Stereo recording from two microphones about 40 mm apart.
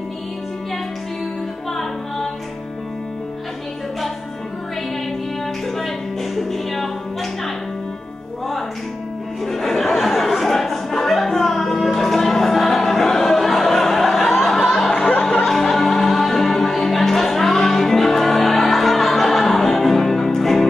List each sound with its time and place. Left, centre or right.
1.7 s music: centre
6.3 s music: centre
9.5 s a sound: centre
9.9 s music: centre